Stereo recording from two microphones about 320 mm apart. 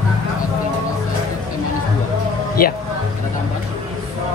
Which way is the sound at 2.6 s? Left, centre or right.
Left.